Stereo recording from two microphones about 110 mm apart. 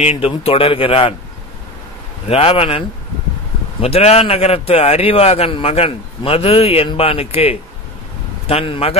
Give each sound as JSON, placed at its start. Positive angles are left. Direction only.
{"t": 0.0, "sound": "speech", "side_deg": 70}
{"t": 2.2, "sound": "speech", "side_deg": 65}
{"t": 3.8, "sound": "speech", "side_deg": 65}